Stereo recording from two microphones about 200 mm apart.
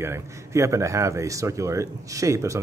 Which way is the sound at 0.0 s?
15° right (ahead or behind).